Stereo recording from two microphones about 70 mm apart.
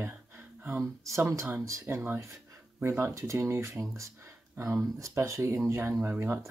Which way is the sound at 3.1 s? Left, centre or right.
Right.